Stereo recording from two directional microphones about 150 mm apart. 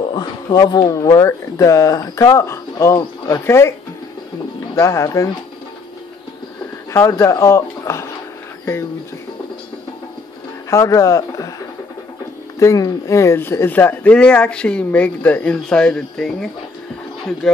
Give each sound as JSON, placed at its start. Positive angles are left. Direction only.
{"t": 0.1, "sound": "speech", "side_deg": 30}
{"t": 4.7, "sound": "speech", "side_deg": 20}
{"t": 6.9, "sound": "speech", "side_deg": 20}
{"t": 10.7, "sound": "speech", "side_deg": 20}
{"t": 12.5, "sound": "speech", "side_deg": 20}